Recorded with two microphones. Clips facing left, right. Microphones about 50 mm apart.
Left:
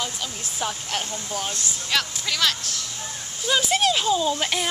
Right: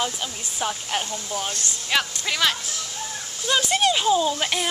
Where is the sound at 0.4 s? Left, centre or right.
Centre.